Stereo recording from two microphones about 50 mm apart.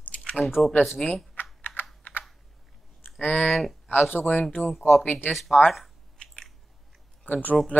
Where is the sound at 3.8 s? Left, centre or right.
Left.